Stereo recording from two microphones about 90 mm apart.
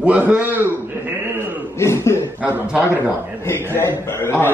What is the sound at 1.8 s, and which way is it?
Cough, 30° left (ahead or behind).